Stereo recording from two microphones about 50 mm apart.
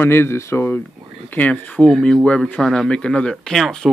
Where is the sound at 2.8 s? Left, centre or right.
Left.